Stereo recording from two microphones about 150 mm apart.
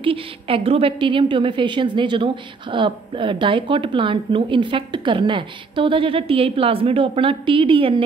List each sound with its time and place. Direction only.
0.0 s a woman's voice: 35° right (ahead or behind)